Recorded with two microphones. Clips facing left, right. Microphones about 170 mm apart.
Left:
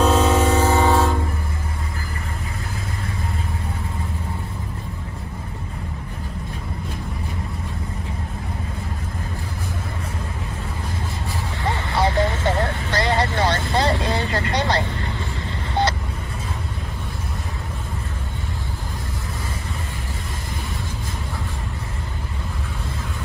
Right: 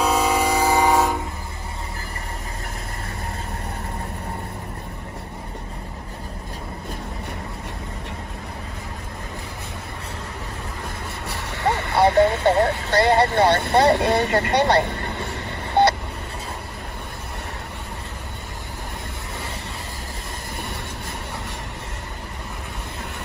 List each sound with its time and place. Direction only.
0.0 s music: 10° right (ahead or behind)
11.2 s vehicle: 60° right (ahead or behind)
15.8 s a sound: 60° right (ahead or behind)